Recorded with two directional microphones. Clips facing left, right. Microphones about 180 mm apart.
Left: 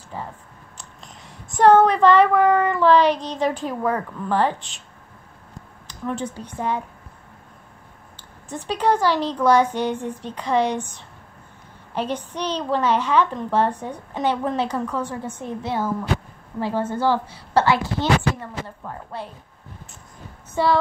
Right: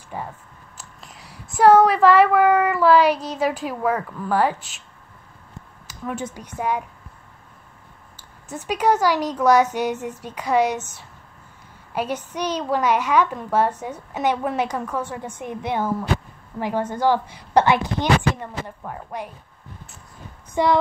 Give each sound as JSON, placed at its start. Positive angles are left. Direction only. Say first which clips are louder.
{"t": 0.1, "sound": "a woman's voice", "louder": "right 1 dB", "side_deg": -15}
{"t": 0.7, "sound": "speech", "louder": "even", "side_deg": -5}
{"t": 6.0, "sound": "a woman's voice", "louder": "left 2 dB", "side_deg": -10}
{"t": 8.6, "sound": "a woman's voice", "louder": "right 1 dB", "side_deg": -10}
{"t": 11.9, "sound": "a woman's voice", "louder": "even", "side_deg": -10}
{"t": 20.5, "sound": "a sound", "louder": "right 1 dB", "side_deg": -20}